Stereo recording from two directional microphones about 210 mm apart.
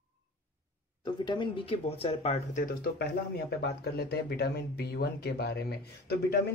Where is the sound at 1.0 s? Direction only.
20° left (ahead or behind).